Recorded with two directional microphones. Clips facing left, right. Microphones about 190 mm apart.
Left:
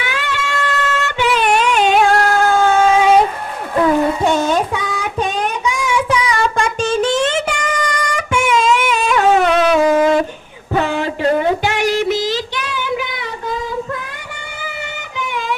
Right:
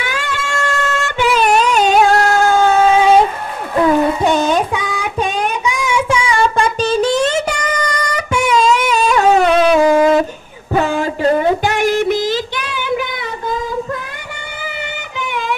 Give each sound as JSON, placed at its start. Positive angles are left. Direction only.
{"t": 0.0, "sound": "music", "side_deg": -45}
{"t": 4.2, "sound": "child singing", "side_deg": -15}
{"t": 5.9, "sound": "child singing", "side_deg": -25}
{"t": 15.1, "sound": "music", "side_deg": -60}